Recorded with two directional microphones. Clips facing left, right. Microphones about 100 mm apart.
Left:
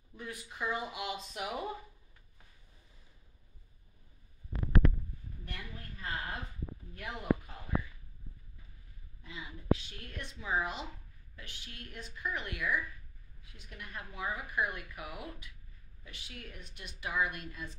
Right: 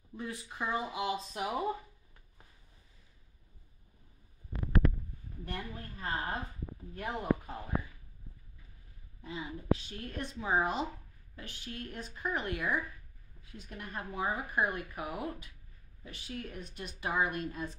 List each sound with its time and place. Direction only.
0.2 s speech: 25° right (ahead or behind)
5.4 s speech: 35° right (ahead or behind)
9.2 s a woman's voice: 35° right (ahead or behind)